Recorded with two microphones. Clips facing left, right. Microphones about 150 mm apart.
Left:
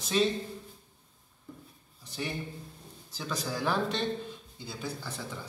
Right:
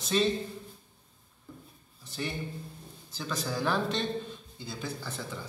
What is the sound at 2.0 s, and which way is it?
A man's voice, 10° left (ahead or behind).